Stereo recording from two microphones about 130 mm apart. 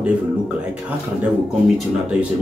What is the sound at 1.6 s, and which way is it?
Speech, 5° right (ahead or behind).